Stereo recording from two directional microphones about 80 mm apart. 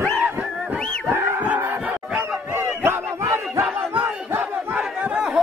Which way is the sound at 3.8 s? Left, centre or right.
Right.